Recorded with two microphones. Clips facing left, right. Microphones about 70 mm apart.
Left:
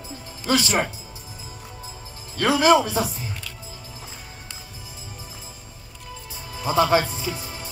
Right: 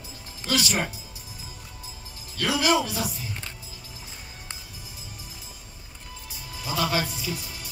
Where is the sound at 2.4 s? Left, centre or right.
Left.